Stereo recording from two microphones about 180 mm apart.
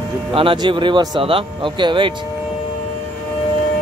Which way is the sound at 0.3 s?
30° right (ahead or behind).